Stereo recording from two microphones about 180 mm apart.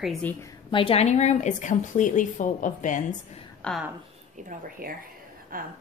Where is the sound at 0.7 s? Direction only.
30° left (ahead or behind).